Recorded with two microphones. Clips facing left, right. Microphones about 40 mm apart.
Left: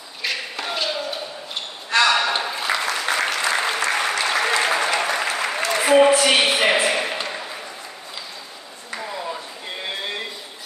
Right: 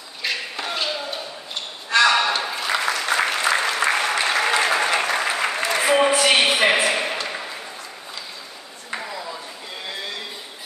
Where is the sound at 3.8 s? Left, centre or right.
Right.